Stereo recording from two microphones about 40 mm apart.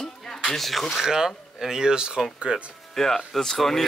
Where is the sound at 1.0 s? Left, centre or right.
Centre.